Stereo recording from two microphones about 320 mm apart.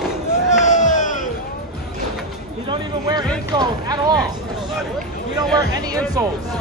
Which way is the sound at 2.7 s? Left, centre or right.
Centre.